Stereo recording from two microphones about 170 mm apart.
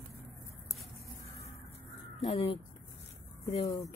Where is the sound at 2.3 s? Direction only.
35° left (ahead or behind).